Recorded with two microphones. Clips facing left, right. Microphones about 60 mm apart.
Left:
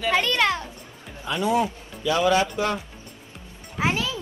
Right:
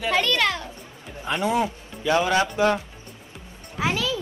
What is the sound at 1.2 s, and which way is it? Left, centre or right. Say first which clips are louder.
Speech: even; right.